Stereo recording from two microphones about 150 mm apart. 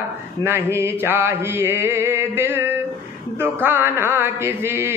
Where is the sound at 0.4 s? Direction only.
15° right (ahead or behind).